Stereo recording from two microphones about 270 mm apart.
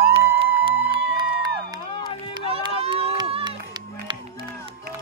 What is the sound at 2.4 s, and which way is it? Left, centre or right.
Run, right.